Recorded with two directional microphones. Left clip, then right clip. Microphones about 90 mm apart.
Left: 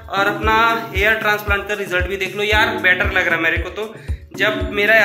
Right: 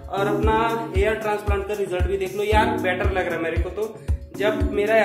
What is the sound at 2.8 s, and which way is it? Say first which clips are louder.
Speech: left 8 dB; 25° right (ahead or behind).